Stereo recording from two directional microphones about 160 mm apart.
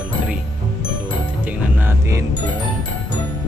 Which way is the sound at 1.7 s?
15° right (ahead or behind).